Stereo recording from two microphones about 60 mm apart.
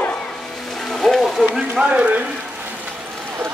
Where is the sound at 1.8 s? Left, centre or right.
Centre.